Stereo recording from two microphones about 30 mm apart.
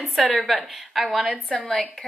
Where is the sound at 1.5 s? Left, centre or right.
Left.